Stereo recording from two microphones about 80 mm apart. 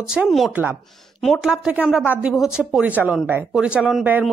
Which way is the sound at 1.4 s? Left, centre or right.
Centre.